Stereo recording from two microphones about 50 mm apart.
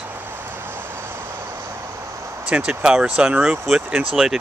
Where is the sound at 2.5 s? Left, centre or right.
Right.